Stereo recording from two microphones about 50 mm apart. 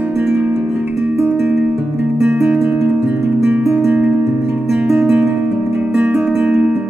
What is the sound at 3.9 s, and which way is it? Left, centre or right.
Music, right.